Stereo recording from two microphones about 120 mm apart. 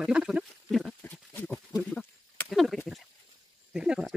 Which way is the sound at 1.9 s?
10° left (ahead or behind).